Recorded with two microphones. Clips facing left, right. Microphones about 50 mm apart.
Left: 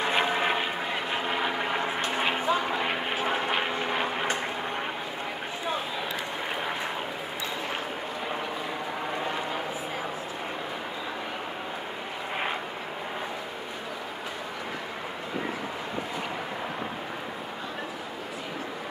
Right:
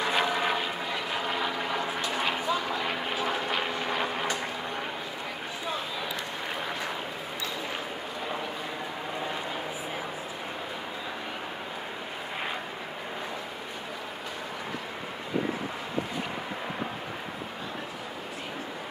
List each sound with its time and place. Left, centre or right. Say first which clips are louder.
0.0 s vehicle: left 1 dB; left
1.2 s vehicle: left 2 dB; left
1.5 s aircraft: left 2 dB; left
2.2 s vehicle: left 4 dB; left